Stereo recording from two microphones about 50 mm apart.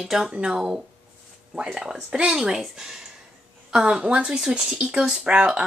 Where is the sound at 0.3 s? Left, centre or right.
Centre.